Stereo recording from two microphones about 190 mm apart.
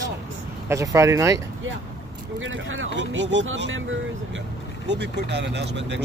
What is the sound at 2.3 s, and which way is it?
Speech, 85° right.